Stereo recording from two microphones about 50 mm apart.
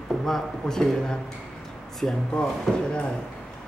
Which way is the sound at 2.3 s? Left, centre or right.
Centre.